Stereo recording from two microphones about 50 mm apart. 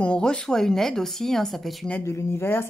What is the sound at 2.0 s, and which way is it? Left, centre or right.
Speech, left.